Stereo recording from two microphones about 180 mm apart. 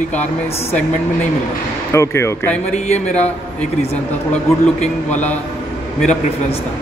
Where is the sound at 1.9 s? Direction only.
15° left (ahead or behind).